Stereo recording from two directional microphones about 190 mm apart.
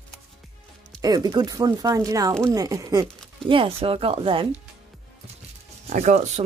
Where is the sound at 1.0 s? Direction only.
20° right (ahead or behind).